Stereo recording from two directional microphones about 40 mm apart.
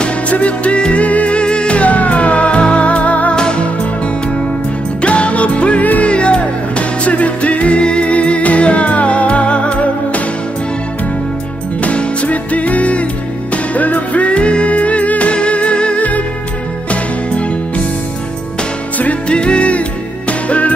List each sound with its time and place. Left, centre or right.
0.0 s music: left
3.3 s music: left
5.0 s music: left
11.8 s music: left
19.2 s music: left